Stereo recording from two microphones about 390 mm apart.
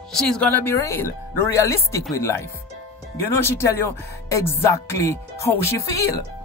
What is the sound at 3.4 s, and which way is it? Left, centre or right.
Speech, centre.